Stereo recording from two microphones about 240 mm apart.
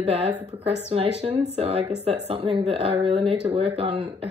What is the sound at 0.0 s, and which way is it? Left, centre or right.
A woman's voice, right.